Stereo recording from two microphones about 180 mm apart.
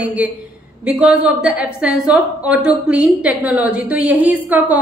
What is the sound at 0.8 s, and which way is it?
A woman's voice, 5° right (ahead or behind).